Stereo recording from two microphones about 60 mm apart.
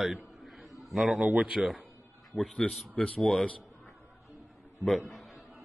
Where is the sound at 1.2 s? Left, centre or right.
Right.